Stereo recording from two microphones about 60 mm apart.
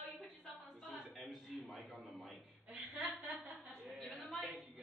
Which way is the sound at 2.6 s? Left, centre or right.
Right.